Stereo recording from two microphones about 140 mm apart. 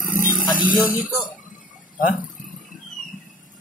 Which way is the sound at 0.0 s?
75° left (ahead or behind).